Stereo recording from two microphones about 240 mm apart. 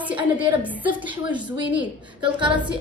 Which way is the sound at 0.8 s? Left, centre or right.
Centre.